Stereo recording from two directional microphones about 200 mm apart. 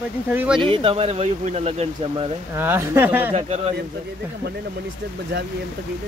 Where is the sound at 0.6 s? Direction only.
25° right (ahead or behind).